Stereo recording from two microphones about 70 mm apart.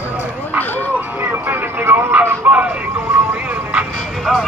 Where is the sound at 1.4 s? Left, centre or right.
Right.